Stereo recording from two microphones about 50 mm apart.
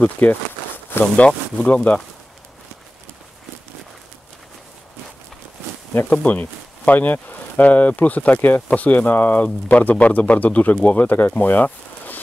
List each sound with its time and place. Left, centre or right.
0.0 s speech: left
1.1 s speech: left
1.9 s speech: left
6.0 s speech: left